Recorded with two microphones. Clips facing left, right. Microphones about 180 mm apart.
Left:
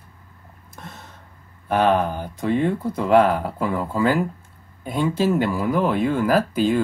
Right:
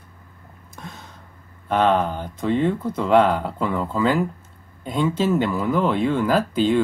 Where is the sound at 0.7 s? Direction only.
Centre (ahead or behind).